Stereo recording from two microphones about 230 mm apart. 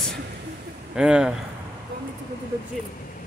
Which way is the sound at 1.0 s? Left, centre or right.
Centre.